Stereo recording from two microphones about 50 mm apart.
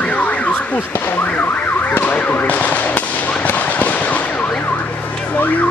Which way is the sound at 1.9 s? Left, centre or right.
Left.